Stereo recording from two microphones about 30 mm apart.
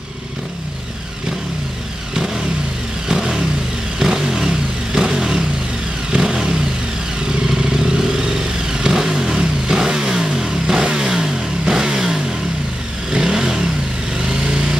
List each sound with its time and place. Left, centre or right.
2.1 s vehicle: centre
7.4 s vehicle: centre